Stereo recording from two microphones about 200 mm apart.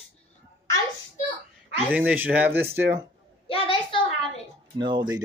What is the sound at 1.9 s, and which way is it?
Speech, 5° right (ahead or behind).